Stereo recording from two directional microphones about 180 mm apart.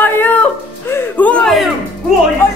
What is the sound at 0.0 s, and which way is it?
Music, 10° left (ahead or behind).